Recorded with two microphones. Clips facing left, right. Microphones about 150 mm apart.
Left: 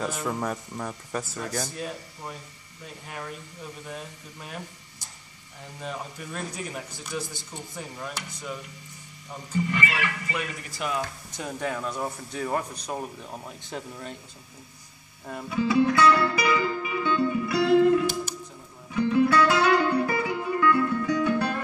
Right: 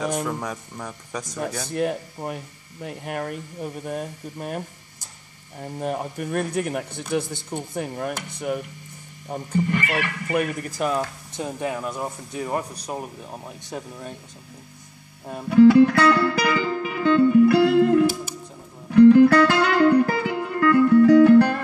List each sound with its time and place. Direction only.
0.2 s speech: 5° left (ahead or behind)
1.7 s speech: 60° right (ahead or behind); by 11.1 s 40° right (ahead or behind)
11.3 s speech: 25° right (ahead or behind)
15.4 s speech: 65° right (ahead or behind)
18.9 s music: 65° right (ahead or behind)